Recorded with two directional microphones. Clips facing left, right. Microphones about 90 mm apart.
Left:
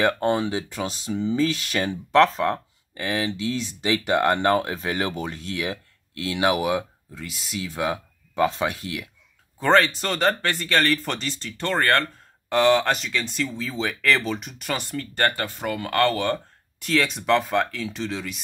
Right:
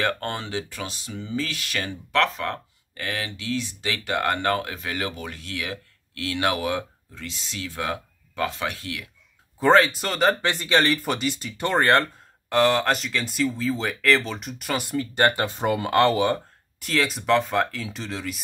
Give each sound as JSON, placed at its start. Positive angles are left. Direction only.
{"t": 0.0, "sound": "speech", "side_deg": 15}
{"t": 9.6, "sound": "speech", "side_deg": -5}
{"t": 10.4, "sound": "speech", "side_deg": -15}
{"t": 12.4, "sound": "speech", "side_deg": 0}
{"t": 16.8, "sound": "speech", "side_deg": 0}